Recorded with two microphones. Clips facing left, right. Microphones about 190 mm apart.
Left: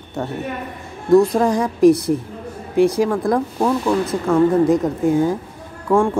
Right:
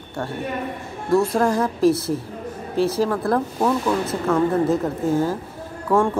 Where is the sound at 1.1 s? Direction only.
15° left (ahead or behind).